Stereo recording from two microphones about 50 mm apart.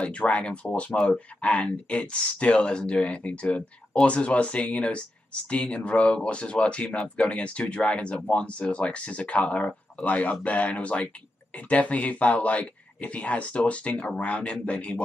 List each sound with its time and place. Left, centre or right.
0.0 s speech: left